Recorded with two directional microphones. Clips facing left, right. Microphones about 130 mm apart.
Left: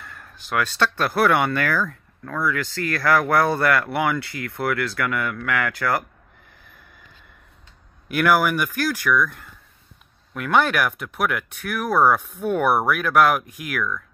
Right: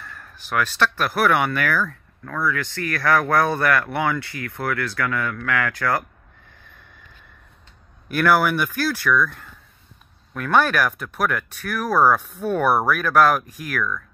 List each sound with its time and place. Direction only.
0.0 s speech: 20° left (ahead or behind)
3.4 s speech: 25° left (ahead or behind)
8.1 s speech: 15° left (ahead or behind)